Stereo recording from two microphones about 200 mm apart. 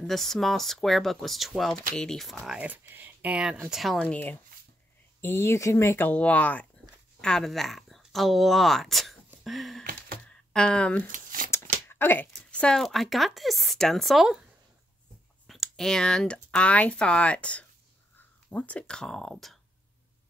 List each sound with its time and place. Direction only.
0.0 s speech: centre (ahead or behind)
9.3 s a sound: centre (ahead or behind)
9.8 s a sound: 45° right (ahead or behind)
10.5 s speech: 5° left (ahead or behind)
11.1 s shuffling cards: 40° right (ahead or behind)
11.9 s speech: 10° left (ahead or behind)
15.4 s speech: centre (ahead or behind)